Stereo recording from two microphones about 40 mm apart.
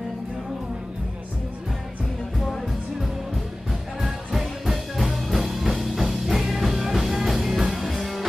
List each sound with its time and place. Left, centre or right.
4.0 s music: centre